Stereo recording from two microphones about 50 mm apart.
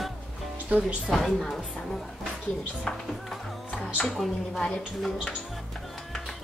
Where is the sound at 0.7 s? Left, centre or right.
Right.